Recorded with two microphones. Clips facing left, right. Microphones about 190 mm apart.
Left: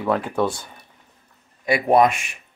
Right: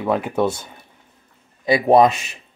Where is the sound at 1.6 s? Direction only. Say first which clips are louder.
Right 3 dB; 30° right (ahead or behind).